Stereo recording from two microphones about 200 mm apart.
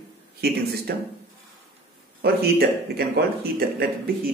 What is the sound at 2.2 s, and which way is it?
Speech, 50° right (ahead or behind).